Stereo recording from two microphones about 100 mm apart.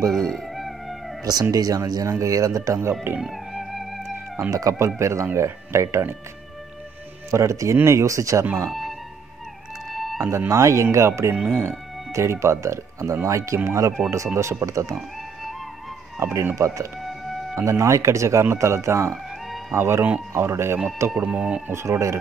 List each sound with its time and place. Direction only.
0.1 s music: centre (ahead or behind)
1.2 s speech: 40° right (ahead or behind)
2.9 s speech: 20° right (ahead or behind)
3.2 s music: centre (ahead or behind)
4.5 s speech: 35° right (ahead or behind)
7.2 s speech: 30° right (ahead or behind)
8.6 s music: centre (ahead or behind)
10.2 s speech: 25° right (ahead or behind)
16.5 s speech: 30° right (ahead or behind)
21.2 s speech: 15° right (ahead or behind)
21.7 s speech: 30° right (ahead or behind)